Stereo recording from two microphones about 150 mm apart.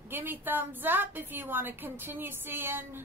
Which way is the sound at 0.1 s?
15° right (ahead or behind).